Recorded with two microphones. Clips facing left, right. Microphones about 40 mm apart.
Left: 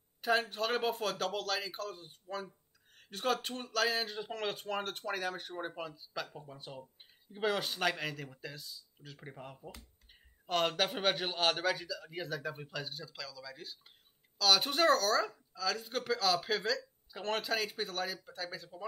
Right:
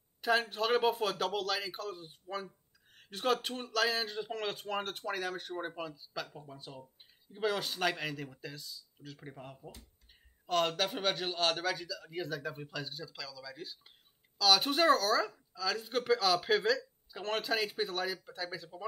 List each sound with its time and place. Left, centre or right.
0.2 s a man's voice: centre
6.5 s speech: left
7.3 s a man's voice: centre